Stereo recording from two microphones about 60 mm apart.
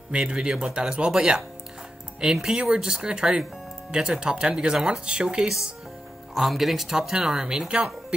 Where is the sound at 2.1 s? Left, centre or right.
Centre.